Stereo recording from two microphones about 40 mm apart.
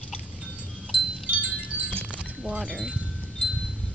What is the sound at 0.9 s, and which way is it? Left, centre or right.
Wind chime, right.